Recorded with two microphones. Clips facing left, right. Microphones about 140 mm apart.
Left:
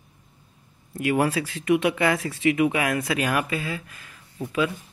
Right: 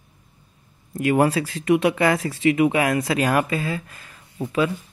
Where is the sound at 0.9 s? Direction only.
40° right (ahead or behind).